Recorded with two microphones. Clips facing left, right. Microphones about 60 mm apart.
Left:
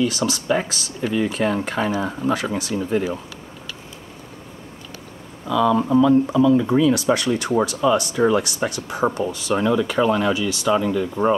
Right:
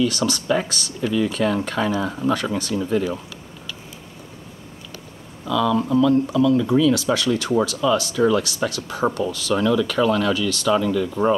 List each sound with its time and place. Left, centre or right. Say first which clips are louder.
0.0 s speech: even; centre
5.5 s speech: left 2 dB; centre